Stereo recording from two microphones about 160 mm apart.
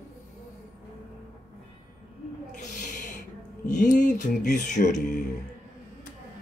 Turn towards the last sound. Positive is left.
turn(degrees=50)  # may be behind; listen again after turning